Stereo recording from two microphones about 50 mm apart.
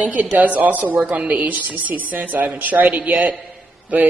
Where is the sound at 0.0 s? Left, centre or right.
Right.